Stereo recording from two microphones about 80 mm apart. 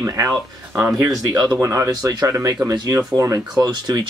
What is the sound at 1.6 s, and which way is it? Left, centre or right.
Speech, right.